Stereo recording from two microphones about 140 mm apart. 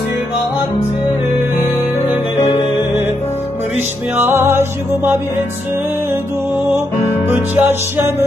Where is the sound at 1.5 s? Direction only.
50° left (ahead or behind).